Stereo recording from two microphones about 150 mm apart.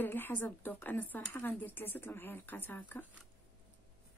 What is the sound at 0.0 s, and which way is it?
Speech, 15° left (ahead or behind).